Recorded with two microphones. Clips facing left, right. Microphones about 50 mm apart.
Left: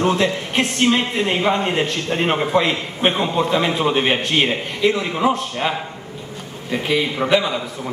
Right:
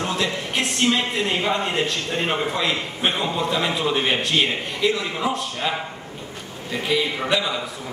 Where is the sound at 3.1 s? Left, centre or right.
Centre.